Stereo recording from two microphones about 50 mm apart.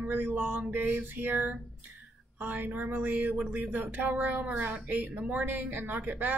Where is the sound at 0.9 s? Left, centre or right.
Right.